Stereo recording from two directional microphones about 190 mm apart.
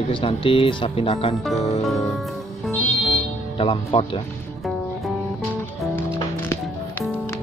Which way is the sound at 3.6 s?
30° left (ahead or behind).